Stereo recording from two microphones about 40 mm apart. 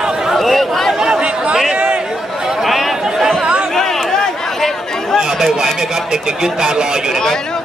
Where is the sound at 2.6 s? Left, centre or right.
Centre.